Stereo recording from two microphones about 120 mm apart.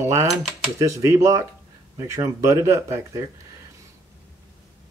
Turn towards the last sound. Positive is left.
turn(degrees=-20)  # may be behind; listen again after turning